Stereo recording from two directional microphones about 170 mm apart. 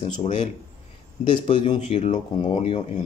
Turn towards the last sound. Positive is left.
turn(degrees=40)  # may be behind; listen again after turning